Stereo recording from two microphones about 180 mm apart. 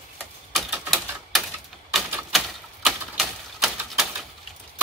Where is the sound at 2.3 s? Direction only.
Centre (ahead or behind).